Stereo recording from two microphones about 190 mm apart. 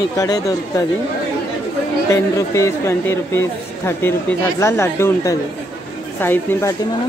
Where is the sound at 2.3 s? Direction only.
15° left (ahead or behind).